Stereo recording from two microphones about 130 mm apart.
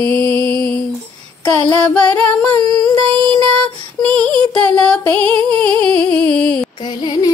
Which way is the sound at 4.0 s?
10° left (ahead or behind).